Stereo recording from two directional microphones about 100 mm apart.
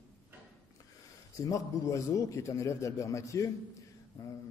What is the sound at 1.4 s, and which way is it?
A man's voice, 30° left (ahead or behind).